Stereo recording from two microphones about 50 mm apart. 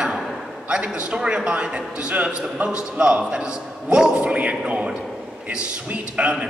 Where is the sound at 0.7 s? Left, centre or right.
Right.